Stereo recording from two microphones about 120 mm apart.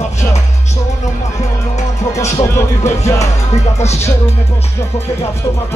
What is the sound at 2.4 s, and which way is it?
Speech, 25° left (ahead or behind).